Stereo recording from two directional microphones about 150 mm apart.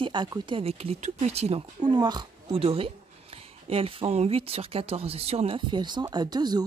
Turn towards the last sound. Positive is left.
turn(degrees=-30)  # may be behind; listen again after turning